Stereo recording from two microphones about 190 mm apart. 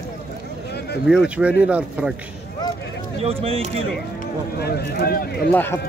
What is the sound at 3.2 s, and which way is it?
Speech, 30° right (ahead or behind).